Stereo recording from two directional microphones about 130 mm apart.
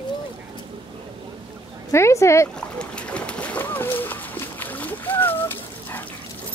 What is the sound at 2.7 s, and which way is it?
Boat, 10° left (ahead or behind).